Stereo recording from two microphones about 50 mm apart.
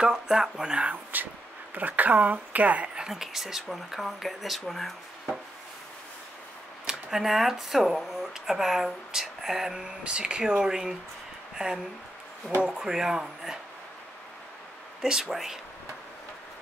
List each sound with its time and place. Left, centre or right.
0.0 s speech: centre
0.8 s a woman's voice: right
3.0 s speech: centre
6.9 s speech: centre
15.0 s speech: centre